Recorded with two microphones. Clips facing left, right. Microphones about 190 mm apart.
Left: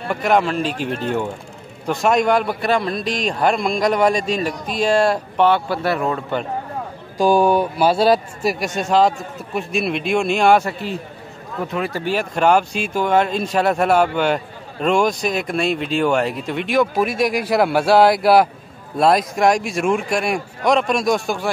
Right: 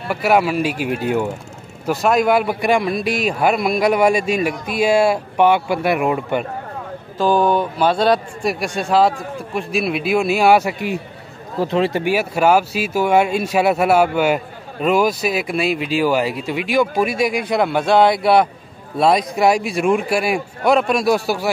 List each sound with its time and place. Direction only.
0.1 s a man's voice: 5° right (ahead or behind)
7.2 s a man's voice: 10° left (ahead or behind); by 11.0 s 10° right (ahead or behind)
11.5 s speech: 30° right (ahead or behind)
12.0 s speech: 10° right (ahead or behind)